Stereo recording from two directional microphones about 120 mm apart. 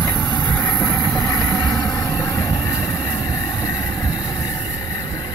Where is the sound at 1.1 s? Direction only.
30° left (ahead or behind).